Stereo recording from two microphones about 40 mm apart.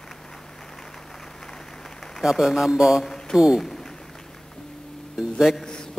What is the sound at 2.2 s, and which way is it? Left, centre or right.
Speech, centre.